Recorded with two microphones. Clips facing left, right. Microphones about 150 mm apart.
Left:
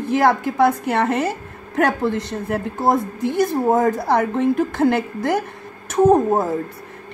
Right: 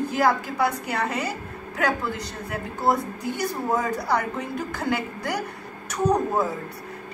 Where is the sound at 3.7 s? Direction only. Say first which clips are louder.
Left 4 dB; 50° left (ahead or behind).